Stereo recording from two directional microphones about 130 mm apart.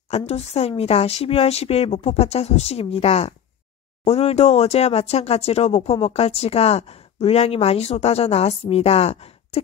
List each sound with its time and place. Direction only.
0.1 s speech: 55° left (ahead or behind)